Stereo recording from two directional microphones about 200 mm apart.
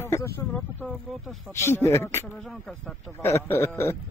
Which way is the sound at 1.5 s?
15° left (ahead or behind).